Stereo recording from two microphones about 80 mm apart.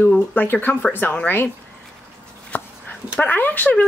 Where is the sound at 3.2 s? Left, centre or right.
Left.